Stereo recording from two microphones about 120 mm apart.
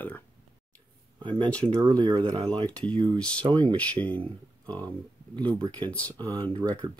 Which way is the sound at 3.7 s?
10° left (ahead or behind).